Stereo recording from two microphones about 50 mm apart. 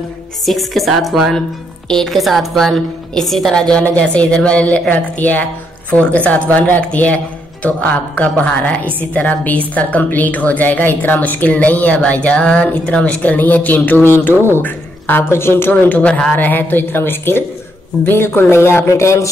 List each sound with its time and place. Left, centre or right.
0.5 s speech: centre
1.9 s a woman's voice: centre
3.7 s a woman's voice: left
13.2 s a woman's voice: left
14.0 s a woman's voice: left
15.2 s speech: left
15.7 s a woman's voice: left
16.1 s a woman's voice: left
16.3 s a woman's voice: left
18.6 s speech: left